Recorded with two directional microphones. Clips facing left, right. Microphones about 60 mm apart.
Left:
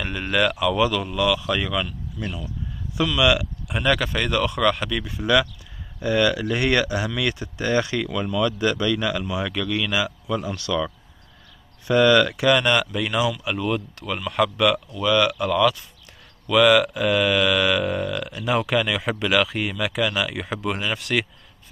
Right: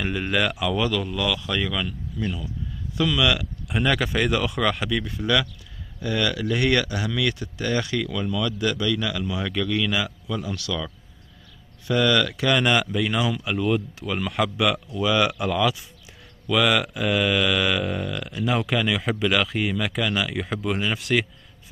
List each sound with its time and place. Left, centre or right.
0.0 s speech: centre
0.8 s speech: centre
3.2 s speech: centre
3.6 s speech: centre
5.2 s speech: centre
9.5 s speech: centre
10.2 s speech: left
11.9 s speech: left
12.4 s a man's voice: centre